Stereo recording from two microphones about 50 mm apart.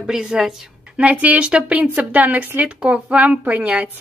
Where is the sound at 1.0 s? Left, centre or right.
Right.